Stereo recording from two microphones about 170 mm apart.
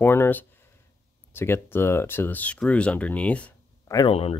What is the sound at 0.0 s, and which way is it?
Speech, 15° left (ahead or behind).